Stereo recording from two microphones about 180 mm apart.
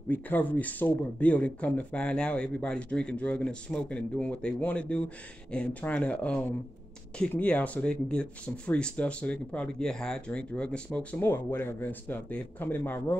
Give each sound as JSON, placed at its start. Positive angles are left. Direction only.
{"t": 0.1, "sound": "speech", "side_deg": 10}